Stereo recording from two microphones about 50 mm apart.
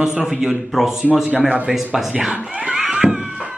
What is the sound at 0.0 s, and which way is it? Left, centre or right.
A man's voice, centre.